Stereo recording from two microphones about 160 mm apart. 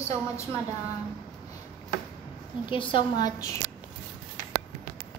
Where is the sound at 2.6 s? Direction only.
30° left (ahead or behind).